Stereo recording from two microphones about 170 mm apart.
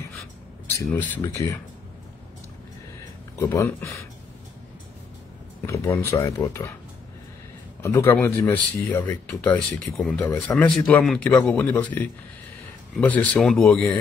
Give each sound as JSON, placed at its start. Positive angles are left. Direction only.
{"t": 0.9, "sound": "speech", "side_deg": 10}
{"t": 3.4, "sound": "speech", "side_deg": 15}
{"t": 5.7, "sound": "speech", "side_deg": 20}
{"t": 7.8, "sound": "speech", "side_deg": 15}